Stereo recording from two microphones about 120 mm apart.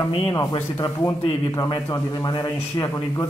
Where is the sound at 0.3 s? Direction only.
40° left (ahead or behind).